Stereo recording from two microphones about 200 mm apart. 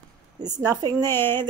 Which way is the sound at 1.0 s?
10° left (ahead or behind).